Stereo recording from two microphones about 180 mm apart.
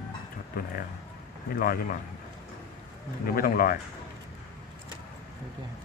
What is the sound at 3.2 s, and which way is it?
Speech, 55° left (ahead or behind).